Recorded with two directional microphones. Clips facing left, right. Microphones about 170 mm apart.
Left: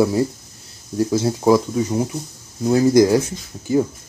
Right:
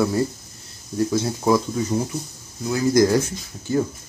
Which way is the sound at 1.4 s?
15° left (ahead or behind).